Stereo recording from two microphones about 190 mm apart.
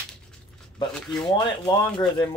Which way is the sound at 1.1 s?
25° left (ahead or behind).